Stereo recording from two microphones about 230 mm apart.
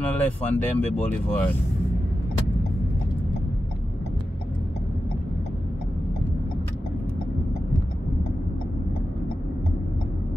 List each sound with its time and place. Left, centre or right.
0.0 s speech: centre